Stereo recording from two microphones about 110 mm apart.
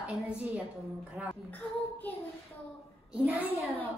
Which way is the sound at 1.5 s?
15° left (ahead or behind).